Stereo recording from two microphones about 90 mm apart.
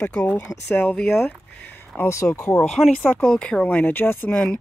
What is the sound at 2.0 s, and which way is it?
Speech, 35° left (ahead or behind).